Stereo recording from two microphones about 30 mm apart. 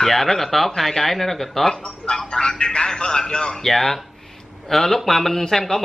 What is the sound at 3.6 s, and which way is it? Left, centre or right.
A man's voice, centre.